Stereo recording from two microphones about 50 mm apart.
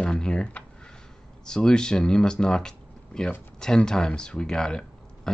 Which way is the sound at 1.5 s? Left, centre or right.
Centre.